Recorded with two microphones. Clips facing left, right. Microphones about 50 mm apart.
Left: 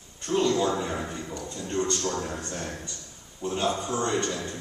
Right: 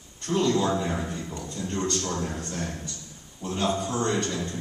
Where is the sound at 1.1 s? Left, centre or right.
Centre.